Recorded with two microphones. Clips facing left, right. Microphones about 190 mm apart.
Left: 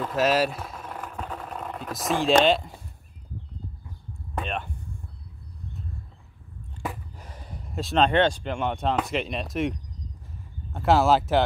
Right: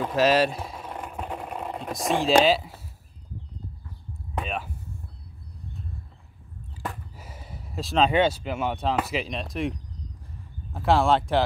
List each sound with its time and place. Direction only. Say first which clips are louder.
0.1 s speech: right 2 dB; centre (ahead or behind)
0.5 s speech: right 2 dB; 20° right (ahead or behind)
0.7 s sewing machine: right 1 dB; 5° right (ahead or behind)
1.0 s vehicle: right 2 dB; 15° right (ahead or behind)
2.0 s speech: even; centre (ahead or behind)
4.4 s a sound: even; 5° right (ahead or behind)
6.8 s speech: left 1 dB; centre (ahead or behind)